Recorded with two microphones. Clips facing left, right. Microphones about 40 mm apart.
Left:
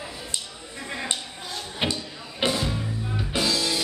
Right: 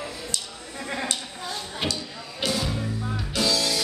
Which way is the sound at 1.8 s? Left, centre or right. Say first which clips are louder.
Left 3 dB; left.